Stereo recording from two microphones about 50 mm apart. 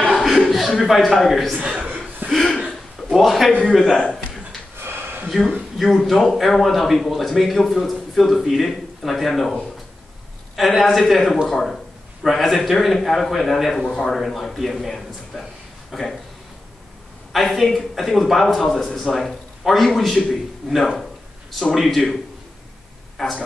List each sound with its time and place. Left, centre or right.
0.1 s chuckle: centre
2.3 s a sound: centre
3.6 s a man's voice: centre
4.7 s a sound: right
6.0 s a man's voice: centre
17.3 s a man's voice: centre